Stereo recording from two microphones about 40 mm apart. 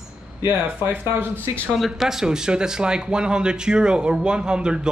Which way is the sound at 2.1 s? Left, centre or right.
Centre.